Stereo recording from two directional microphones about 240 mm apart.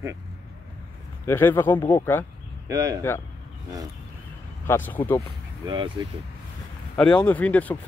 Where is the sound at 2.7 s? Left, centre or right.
Centre.